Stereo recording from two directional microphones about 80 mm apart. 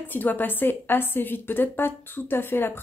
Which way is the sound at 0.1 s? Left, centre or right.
Left.